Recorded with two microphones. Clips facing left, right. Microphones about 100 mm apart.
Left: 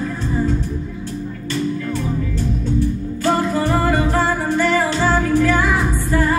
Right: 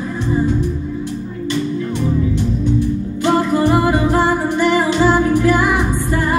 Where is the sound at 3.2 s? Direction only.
15° right (ahead or behind).